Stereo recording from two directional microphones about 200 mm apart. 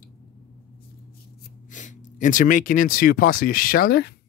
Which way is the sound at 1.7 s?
40° left (ahead or behind).